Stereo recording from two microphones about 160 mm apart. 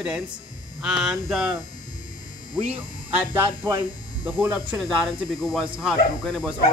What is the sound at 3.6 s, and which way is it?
Speech, 20° right (ahead or behind).